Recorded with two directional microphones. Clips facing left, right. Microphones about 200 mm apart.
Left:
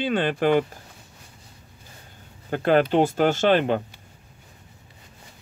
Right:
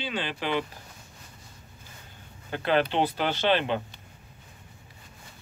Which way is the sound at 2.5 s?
45° left (ahead or behind).